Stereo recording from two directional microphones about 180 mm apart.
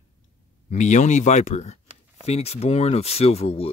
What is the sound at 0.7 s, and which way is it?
Speech, 40° left (ahead or behind).